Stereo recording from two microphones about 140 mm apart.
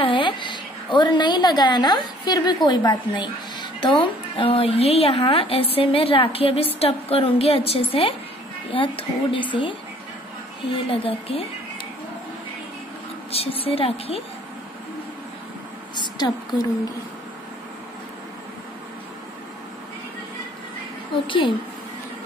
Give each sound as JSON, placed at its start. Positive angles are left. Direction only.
{"t": 0.0, "sound": "a woman's voice", "side_deg": 35}
{"t": 13.3, "sound": "a woman's voice", "side_deg": 45}
{"t": 16.0, "sound": "a woman's voice", "side_deg": 30}